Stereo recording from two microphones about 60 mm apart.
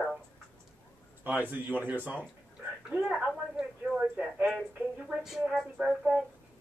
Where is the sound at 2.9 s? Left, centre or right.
Centre.